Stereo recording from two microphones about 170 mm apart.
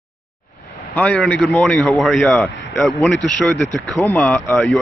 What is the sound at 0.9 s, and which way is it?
Speech, 5° left (ahead or behind).